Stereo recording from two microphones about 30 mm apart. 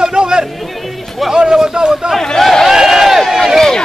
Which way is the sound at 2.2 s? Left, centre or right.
Centre.